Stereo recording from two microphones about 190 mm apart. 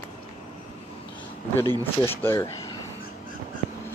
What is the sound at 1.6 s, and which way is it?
Speech, 15° left (ahead or behind).